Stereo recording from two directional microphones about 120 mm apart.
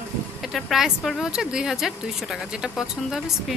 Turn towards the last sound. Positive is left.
turn(degrees=-5)  # may be behind; listen again after turning